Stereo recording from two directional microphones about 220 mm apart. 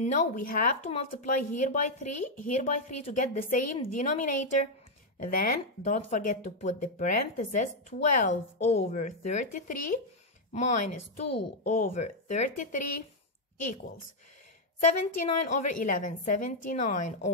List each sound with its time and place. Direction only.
0.0 s speech: 30° left (ahead or behind)
14.8 s speech: 30° left (ahead or behind)